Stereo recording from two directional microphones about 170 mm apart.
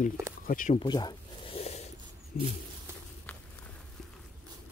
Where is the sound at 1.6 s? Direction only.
40° left (ahead or behind).